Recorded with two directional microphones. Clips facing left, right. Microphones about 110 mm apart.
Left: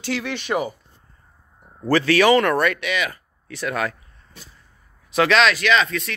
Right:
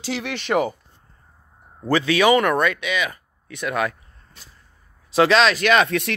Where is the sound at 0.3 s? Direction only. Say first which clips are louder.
Right 5 dB; 60° right (ahead or behind).